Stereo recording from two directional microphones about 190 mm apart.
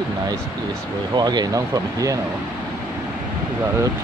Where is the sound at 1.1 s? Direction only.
20° right (ahead or behind).